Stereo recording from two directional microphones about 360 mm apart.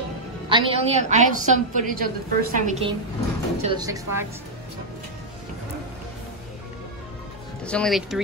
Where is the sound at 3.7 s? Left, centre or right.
Centre.